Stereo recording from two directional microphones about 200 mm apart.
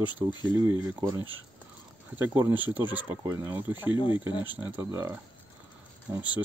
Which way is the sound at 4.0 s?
25° left (ahead or behind).